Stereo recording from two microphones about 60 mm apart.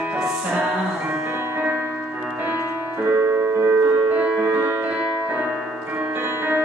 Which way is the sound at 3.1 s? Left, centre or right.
Right.